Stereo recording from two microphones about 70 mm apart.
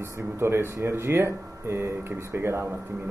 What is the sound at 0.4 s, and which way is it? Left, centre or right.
Speech, right.